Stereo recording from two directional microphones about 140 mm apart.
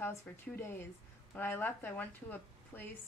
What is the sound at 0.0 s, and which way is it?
Speech, 20° left (ahead or behind).